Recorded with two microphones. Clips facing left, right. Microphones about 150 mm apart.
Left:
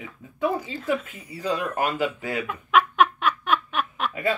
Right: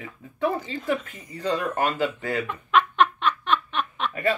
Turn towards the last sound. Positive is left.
turn(degrees=10)  # may be behind; listen again after turning